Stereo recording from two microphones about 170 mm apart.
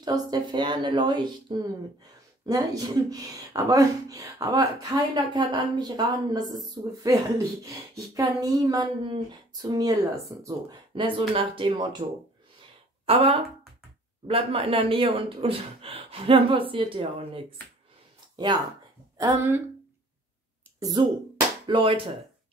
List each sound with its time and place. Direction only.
0.0 s speech: 25° right (ahead or behind)
13.0 s speech: 35° right (ahead or behind)
18.3 s a sound: 25° right (ahead or behind)
19.1 s speech: 15° right (ahead or behind)
20.8 s speech: 25° right (ahead or behind)